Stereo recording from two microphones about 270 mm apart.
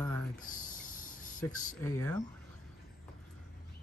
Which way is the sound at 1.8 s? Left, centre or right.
Centre.